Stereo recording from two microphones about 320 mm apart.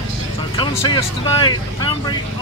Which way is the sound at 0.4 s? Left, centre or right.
Centre.